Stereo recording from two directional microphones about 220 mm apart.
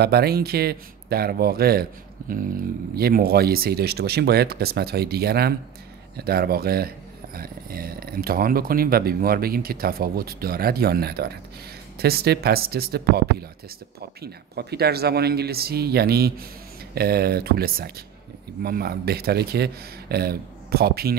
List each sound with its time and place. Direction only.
0.0 s speech: 45° right (ahead or behind)